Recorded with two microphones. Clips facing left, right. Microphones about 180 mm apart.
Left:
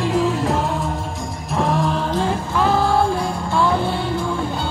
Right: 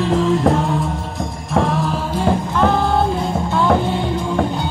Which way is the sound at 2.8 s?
20° right (ahead or behind).